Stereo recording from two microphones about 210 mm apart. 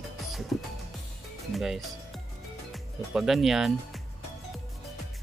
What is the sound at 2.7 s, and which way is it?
Speech, centre (ahead or behind).